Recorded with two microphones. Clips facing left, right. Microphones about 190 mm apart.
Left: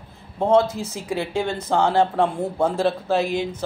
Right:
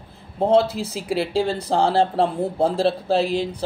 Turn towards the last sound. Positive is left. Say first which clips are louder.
# right 1 dB
turn(degrees=-35)  # may be behind; listen again after turning